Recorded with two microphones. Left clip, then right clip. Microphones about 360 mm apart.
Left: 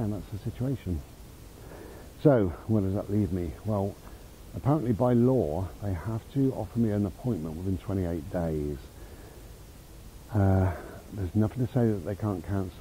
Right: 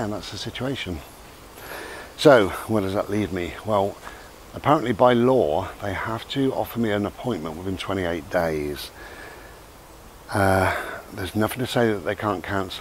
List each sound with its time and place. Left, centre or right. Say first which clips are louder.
0.0 s speech: right 8 dB; centre
5.3 s speech: right 8 dB; right
10.3 s speech: right 10 dB; centre